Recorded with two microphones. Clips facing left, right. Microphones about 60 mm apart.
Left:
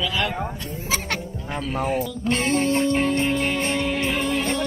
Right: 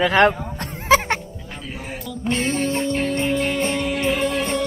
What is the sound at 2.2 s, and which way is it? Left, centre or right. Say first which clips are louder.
Music: even; left.